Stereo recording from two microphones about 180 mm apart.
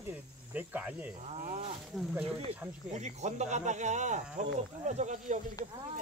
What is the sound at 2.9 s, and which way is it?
Speech, 40° right (ahead or behind).